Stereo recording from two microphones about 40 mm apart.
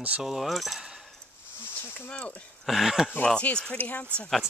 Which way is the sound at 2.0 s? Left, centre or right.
Left.